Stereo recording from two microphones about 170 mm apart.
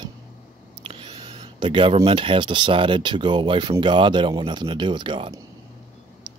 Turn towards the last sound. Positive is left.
turn(degrees=-30)  # may be behind; listen again after turning